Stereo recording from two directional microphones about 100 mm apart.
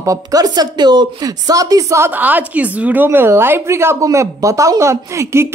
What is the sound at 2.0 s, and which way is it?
A woman's voice, 15° right (ahead or behind).